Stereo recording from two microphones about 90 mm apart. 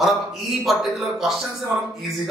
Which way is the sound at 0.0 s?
Centre (ahead or behind).